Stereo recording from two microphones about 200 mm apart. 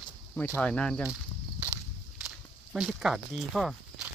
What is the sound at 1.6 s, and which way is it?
Walk, 5° right (ahead or behind).